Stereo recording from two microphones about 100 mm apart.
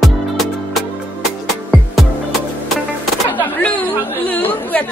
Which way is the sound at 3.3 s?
15° left (ahead or behind).